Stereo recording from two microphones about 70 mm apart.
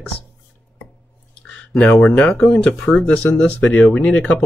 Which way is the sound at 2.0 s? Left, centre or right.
Centre.